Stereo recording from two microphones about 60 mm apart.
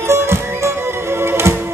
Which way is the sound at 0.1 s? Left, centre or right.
Right.